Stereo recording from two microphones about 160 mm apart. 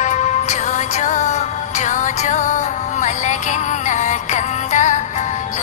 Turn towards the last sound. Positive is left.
turn(degrees=50)  # may be behind; listen again after turning